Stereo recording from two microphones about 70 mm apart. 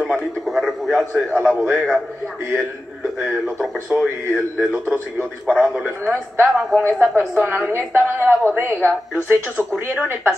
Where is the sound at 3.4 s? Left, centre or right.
Centre.